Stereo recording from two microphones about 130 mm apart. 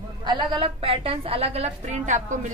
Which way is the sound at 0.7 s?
45° right (ahead or behind).